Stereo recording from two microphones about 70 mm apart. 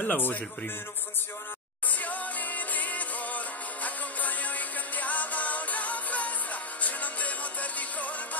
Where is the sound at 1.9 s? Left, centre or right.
Left.